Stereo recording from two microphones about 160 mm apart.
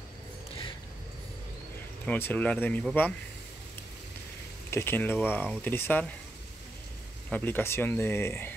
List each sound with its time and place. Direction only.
2.0 s speech: 10° left (ahead or behind)
4.6 s speech: 15° left (ahead or behind)
7.2 s speech: 10° left (ahead or behind)